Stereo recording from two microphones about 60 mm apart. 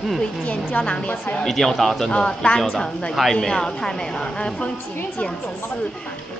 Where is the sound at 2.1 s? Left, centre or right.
Centre.